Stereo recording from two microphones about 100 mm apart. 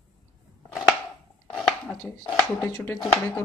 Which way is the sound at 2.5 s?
20° left (ahead or behind).